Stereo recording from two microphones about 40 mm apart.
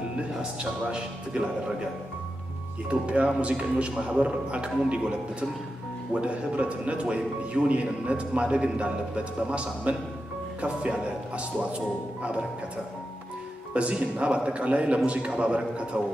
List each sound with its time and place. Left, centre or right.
0.4 s speech: right
2.9 s speech: right
6.2 s speech: right
13.7 s speech: right